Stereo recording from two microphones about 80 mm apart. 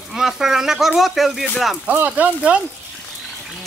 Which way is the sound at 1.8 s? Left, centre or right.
Centre.